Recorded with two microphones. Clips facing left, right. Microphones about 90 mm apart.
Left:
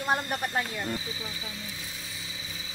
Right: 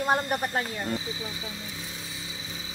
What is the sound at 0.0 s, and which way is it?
Speech, 10° right (ahead or behind).